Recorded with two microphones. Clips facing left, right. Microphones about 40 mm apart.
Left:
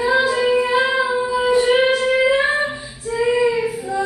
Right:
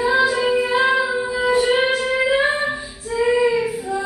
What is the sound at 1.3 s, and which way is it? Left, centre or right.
Music, centre.